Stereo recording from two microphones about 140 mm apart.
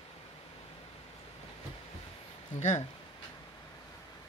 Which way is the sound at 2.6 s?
55° left (ahead or behind).